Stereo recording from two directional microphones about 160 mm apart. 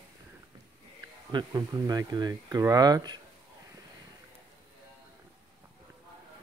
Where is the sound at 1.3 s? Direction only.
25° right (ahead or behind).